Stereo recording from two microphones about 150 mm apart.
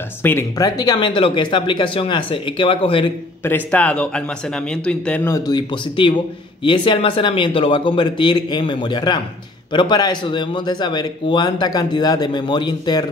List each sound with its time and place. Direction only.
0.2 s speech: 15° left (ahead or behind); by 3.1 s 35° left (ahead or behind)
3.4 s a man's voice: 10° left (ahead or behind)
5.5 s a man's voice: 30° left (ahead or behind)